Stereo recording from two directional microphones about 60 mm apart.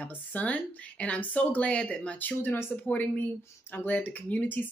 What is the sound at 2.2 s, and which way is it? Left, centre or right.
Speech, left.